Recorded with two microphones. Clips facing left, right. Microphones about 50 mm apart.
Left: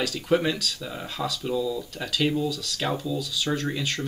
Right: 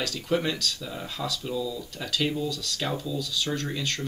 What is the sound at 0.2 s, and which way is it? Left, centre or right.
Speech, centre.